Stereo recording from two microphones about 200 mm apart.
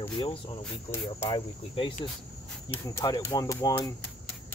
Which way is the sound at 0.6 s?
10° left (ahead or behind).